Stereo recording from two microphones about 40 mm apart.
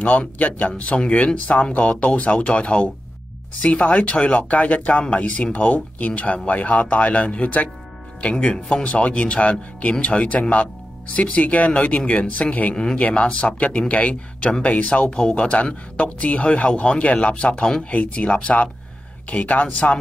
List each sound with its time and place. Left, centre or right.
0.0 s speech: left
15.0 s speech: left